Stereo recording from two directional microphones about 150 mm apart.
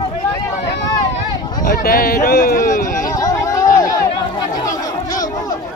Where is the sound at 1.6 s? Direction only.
70° left (ahead or behind).